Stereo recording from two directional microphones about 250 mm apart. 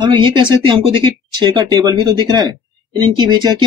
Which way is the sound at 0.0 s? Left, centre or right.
Centre.